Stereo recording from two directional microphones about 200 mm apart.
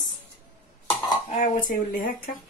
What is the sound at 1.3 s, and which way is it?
Speech, 40° left (ahead or behind).